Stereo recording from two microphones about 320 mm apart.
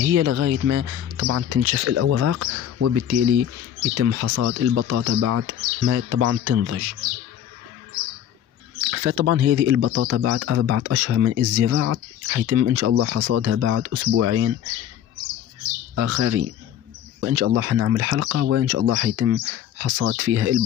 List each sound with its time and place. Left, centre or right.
0.0 s speech: right
8.9 s speech: right
15.9 s speech: right